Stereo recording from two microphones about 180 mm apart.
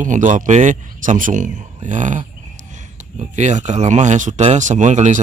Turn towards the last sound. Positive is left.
turn(degrees=-40)  # may be behind; listen again after turning